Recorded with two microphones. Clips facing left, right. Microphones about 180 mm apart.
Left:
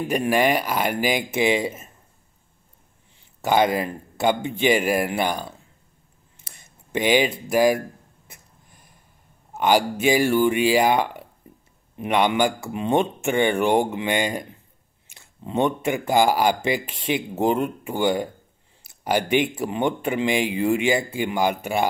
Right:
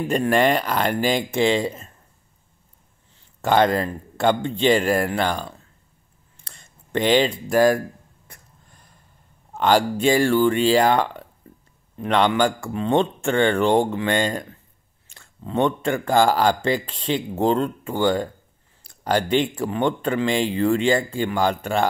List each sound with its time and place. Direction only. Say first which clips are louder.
0.1 s speech: right 2 dB; 10° left (ahead or behind)
3.2 s speech: right 1 dB; 10° left (ahead or behind)
6.9 s speech: right 1 dB; 10° left (ahead or behind)
8.3 s a sound: right 1 dB; 15° left (ahead or behind)
9.5 s speech: right 1 dB; 10° left (ahead or behind)
11.4 s a sound: right 1 dB; 15° left (ahead or behind)
12.0 s speech: right 1 dB; 15° left (ahead or behind)